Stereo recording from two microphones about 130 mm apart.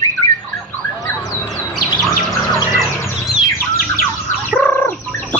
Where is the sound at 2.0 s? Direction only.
Centre (ahead or behind).